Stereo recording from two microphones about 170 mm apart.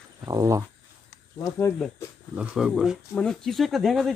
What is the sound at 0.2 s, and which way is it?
Speech, 20° right (ahead or behind).